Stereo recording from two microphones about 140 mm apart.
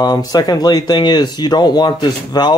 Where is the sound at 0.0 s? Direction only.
30° left (ahead or behind).